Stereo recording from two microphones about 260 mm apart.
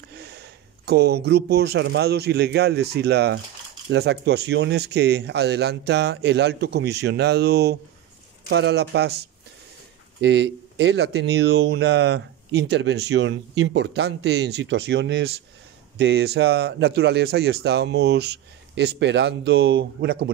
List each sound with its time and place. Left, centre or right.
0.1 s speech: right
10.2 s speech: right